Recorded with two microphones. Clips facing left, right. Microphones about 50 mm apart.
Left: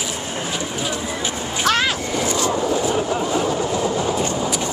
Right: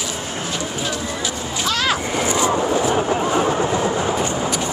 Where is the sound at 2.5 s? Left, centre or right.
Right.